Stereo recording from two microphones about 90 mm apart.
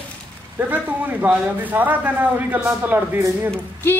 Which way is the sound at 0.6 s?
20° right (ahead or behind).